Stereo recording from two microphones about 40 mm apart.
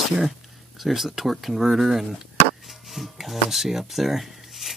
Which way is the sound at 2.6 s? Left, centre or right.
Centre.